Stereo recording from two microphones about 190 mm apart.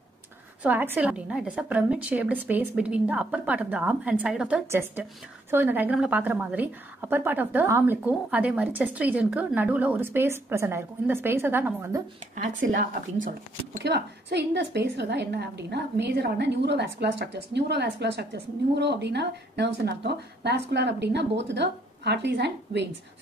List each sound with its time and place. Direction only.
0.6 s a woman's voice: 10° right (ahead or behind)
13.8 s a woman's voice: 60° right (ahead or behind)